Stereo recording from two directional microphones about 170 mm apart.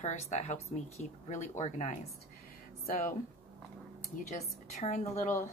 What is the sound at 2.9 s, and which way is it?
Speech, 50° left (ahead or behind).